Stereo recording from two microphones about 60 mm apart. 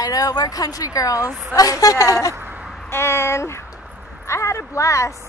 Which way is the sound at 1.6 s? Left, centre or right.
Left.